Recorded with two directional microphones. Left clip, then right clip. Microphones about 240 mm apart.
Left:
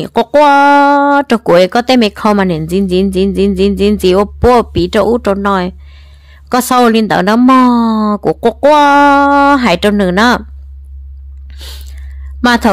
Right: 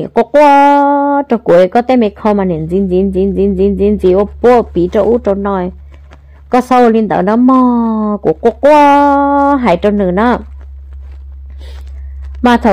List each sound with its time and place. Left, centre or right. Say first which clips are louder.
0.0 s speech: right 1 dB; left
4.2 s speech: even; left
12.4 s speech: right 1 dB; left